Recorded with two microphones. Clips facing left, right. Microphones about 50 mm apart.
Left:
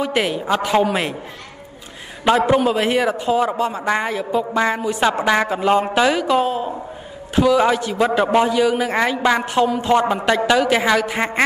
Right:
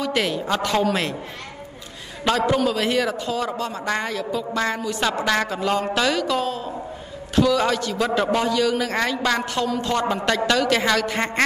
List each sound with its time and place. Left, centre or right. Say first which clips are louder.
0.0 s a woman's voice: left 3 dB; centre
2.2 s a man's voice: left 5 dB; left